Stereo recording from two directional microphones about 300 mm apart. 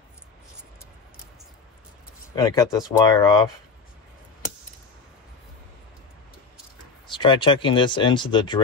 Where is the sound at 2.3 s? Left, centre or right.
Centre.